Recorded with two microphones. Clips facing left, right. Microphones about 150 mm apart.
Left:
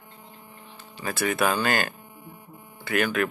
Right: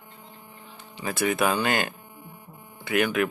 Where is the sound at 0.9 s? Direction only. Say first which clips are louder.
Right 1 dB; 15° right (ahead or behind).